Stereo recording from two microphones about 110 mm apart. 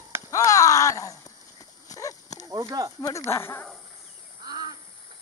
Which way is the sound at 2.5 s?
30° right (ahead or behind).